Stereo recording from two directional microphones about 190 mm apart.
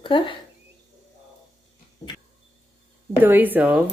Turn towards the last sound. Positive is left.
turn(degrees=-10)  # may be behind; listen again after turning